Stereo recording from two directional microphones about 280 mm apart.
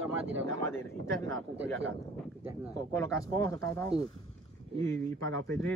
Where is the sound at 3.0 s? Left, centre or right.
Centre.